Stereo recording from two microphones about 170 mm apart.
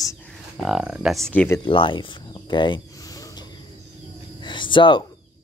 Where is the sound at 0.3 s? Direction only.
Centre (ahead or behind).